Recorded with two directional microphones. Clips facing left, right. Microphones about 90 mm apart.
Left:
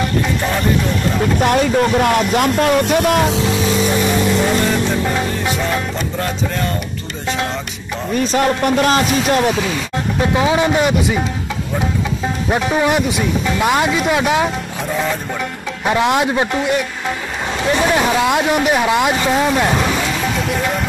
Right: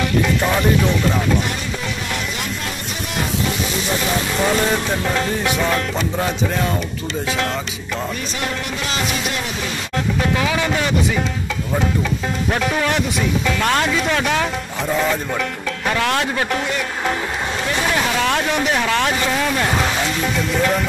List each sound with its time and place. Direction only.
1.4 s speech: 60° left (ahead or behind)
5.7 s speech: 5° right (ahead or behind)
8.3 s speech: 50° left (ahead or behind)
10.3 s a man's voice: 25° left (ahead or behind)
12.4 s speech: 15° left (ahead or behind)
15.9 s a man's voice: 20° left (ahead or behind)
18.2 s speech: 10° left (ahead or behind)